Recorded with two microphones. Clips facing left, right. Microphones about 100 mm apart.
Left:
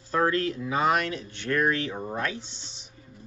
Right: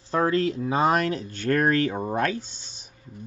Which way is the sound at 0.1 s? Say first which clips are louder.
Right 2 dB; 30° right (ahead or behind).